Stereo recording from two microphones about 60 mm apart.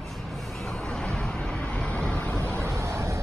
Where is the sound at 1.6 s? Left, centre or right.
Left.